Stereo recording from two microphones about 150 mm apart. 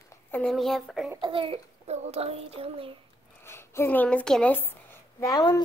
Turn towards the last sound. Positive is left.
turn(degrees=25)  # may be behind; listen again after turning